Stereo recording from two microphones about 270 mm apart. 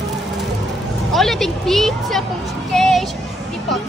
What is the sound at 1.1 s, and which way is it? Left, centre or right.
Speech, centre.